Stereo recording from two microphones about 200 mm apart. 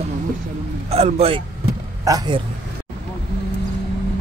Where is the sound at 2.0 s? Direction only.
20° right (ahead or behind).